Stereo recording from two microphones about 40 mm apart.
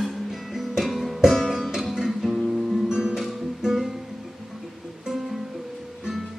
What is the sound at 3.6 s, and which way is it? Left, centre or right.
Music, centre.